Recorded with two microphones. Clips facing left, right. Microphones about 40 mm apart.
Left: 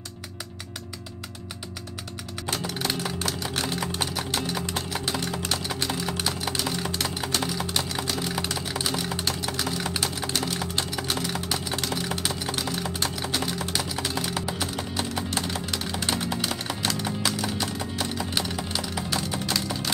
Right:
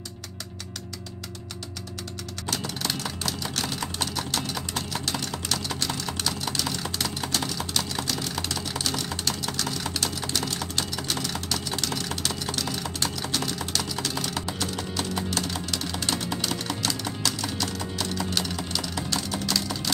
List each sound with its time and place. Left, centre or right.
2.4 s a sound: centre
12.8 s typing: centre
15.2 s music: centre